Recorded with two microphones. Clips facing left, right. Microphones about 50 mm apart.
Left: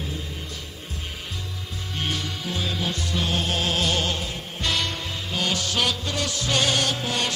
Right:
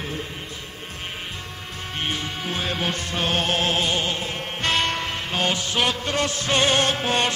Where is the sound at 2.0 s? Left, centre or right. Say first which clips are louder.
Right 1 dB; right.